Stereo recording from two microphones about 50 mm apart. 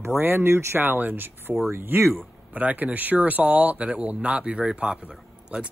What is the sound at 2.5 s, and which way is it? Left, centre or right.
Speech, right.